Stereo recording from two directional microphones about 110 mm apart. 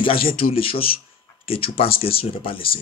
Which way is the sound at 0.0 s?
55° left (ahead or behind).